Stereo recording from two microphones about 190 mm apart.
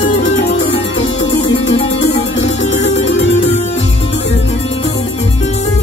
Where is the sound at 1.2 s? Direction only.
30° left (ahead or behind).